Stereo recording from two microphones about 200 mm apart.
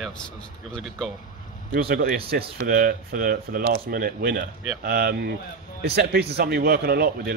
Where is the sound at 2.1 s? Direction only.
50° right (ahead or behind).